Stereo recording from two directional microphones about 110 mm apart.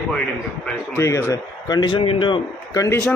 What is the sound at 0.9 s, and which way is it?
A man's voice, 25° left (ahead or behind).